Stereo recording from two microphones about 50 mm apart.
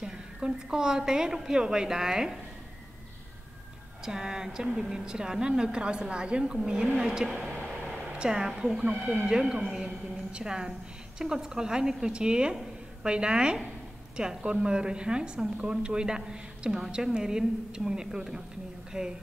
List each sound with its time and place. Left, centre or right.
0.0 s a woman's voice: centre
4.0 s a woman's voice: centre